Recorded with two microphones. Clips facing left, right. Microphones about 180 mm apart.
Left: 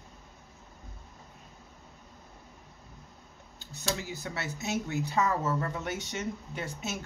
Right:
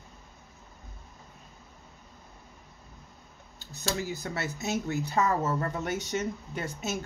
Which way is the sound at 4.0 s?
45° right (ahead or behind).